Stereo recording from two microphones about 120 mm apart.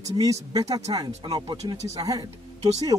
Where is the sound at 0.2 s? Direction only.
30° right (ahead or behind).